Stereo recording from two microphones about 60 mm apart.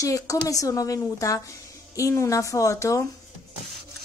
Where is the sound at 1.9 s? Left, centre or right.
Left.